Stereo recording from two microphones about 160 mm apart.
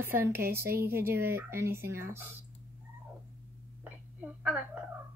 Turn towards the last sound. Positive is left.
turn(degrees=-10)  # may be behind; listen again after turning